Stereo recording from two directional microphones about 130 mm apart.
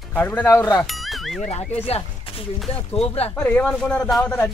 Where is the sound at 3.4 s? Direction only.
10° left (ahead or behind).